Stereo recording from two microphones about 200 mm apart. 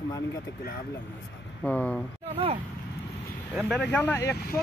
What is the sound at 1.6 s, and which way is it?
Speech, 5° left (ahead or behind).